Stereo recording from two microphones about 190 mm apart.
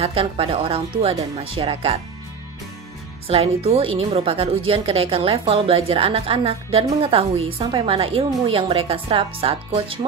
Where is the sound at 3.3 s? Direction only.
30° right (ahead or behind).